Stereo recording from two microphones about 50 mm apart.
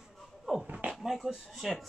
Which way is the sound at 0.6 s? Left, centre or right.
Right.